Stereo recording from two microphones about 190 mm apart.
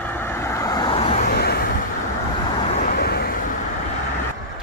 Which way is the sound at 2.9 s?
55° left (ahead or behind).